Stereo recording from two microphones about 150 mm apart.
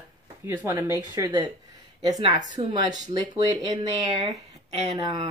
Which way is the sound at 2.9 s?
50° right (ahead or behind).